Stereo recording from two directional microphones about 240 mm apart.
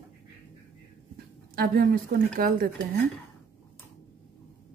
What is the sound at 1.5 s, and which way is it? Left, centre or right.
A woman's voice, right.